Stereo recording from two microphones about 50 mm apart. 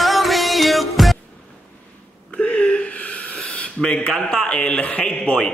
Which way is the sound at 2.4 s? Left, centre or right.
Left.